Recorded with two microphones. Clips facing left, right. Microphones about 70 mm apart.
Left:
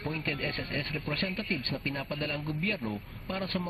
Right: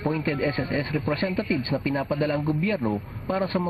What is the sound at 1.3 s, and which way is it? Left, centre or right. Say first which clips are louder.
Speech: right 9 dB; right.